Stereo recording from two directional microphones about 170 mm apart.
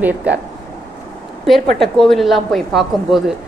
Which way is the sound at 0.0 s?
10° right (ahead or behind).